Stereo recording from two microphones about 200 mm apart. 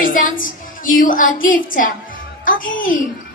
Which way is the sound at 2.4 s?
40° left (ahead or behind).